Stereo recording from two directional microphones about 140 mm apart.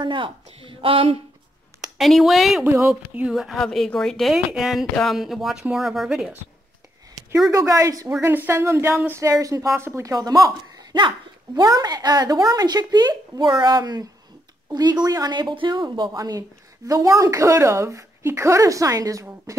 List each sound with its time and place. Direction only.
0.0 s a woman's voice: 35° right (ahead or behind)
2.0 s speech: centre (ahead or behind)
2.6 s speech: 20° right (ahead or behind)
2.9 s speech: 5° right (ahead or behind)
7.5 s a woman's voice: 25° right (ahead or behind)